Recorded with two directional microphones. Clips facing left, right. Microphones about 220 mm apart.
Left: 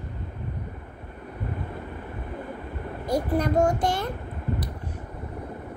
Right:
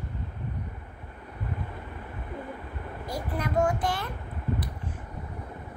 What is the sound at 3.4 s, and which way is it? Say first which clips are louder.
Child singing: left 4 dB; 40° left (ahead or behind).